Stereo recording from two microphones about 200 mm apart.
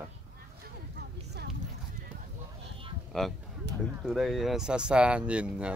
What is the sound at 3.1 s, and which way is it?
Speech, centre (ahead or behind).